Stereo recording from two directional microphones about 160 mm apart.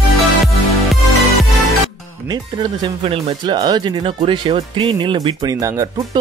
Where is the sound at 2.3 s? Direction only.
25° right (ahead or behind).